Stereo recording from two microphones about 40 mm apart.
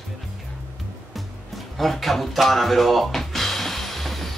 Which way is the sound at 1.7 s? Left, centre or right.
Centre.